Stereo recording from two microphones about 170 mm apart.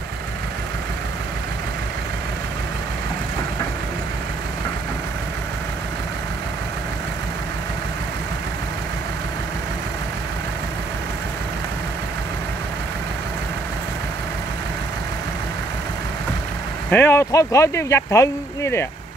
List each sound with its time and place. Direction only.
16.9 s speech: 15° left (ahead or behind)